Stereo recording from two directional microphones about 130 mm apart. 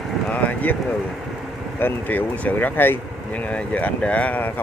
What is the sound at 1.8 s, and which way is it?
Speech, 15° left (ahead or behind).